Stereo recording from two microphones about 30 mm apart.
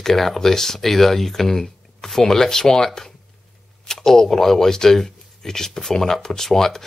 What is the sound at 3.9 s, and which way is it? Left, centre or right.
Speech, centre.